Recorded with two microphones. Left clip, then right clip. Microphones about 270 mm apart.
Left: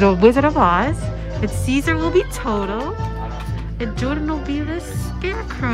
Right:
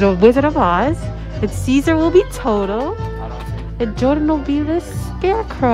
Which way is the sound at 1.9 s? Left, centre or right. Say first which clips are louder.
Right 5 dB; centre.